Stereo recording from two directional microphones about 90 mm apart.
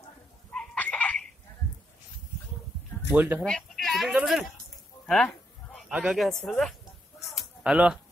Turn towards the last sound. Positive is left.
turn(degrees=-10)  # may be behind; listen again after turning